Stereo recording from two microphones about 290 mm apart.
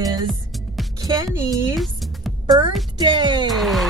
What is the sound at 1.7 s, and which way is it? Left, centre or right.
Music, centre.